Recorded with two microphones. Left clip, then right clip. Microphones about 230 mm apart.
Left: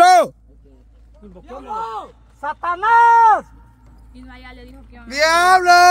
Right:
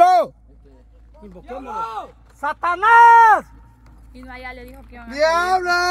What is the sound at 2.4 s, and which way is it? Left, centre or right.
Speech, right.